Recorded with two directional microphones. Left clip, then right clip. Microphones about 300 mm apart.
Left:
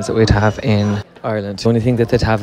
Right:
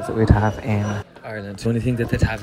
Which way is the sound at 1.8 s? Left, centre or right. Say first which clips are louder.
Left 8 dB; centre.